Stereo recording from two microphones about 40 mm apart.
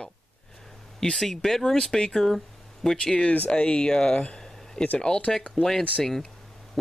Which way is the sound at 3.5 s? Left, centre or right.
Left.